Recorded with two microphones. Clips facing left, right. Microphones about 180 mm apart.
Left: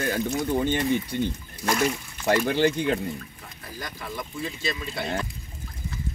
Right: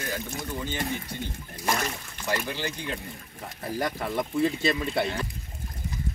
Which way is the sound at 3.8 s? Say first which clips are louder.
Right 7 dB; 65° right (ahead or behind).